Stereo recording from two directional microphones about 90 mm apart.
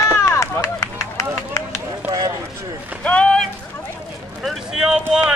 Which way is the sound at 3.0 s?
15° left (ahead or behind).